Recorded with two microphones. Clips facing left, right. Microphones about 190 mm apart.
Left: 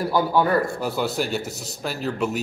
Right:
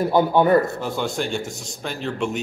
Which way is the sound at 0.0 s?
25° right (ahead or behind).